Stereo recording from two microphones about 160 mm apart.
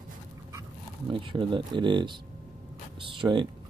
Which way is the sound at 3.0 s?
30° right (ahead or behind).